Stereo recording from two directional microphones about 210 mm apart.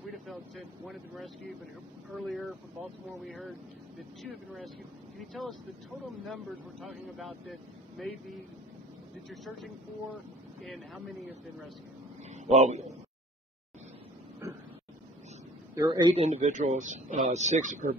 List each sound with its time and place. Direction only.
0.8 s speech: centre (ahead or behind)
9.3 s speech: centre (ahead or behind)
12.3 s a man's voice: 30° right (ahead or behind)
14.4 s vehicle: 15° right (ahead or behind)
15.7 s a man's voice: 15° right (ahead or behind)
16.1 s speech: 30° right (ahead or behind)